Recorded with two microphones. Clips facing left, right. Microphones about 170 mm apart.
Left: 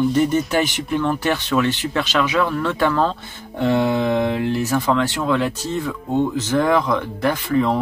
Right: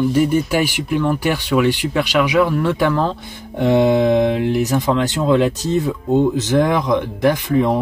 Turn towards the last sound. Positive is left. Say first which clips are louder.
# right 2 dB
turn(degrees=-20)  # may be behind; listen again after turning